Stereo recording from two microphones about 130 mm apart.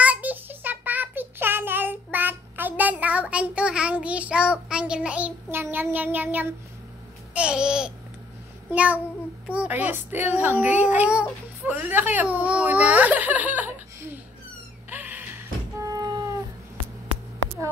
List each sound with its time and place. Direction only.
0.0 s child singing: 10° right (ahead or behind)
7.3 s babbling: 5° right (ahead or behind)
8.6 s a child's voice: 10° right (ahead or behind)
14.9 s music: 15° right (ahead or behind)
15.8 s cat: 25° right (ahead or behind)